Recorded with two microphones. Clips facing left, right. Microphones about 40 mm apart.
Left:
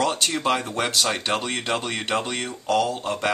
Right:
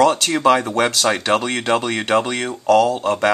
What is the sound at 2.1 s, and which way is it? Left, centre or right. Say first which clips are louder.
Speech: right 8 dB; right.